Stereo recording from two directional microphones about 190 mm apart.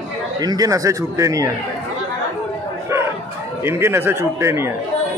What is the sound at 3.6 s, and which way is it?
A man's voice, 15° right (ahead or behind).